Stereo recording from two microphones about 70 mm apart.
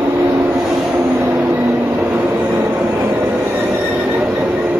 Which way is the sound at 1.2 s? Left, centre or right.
Right.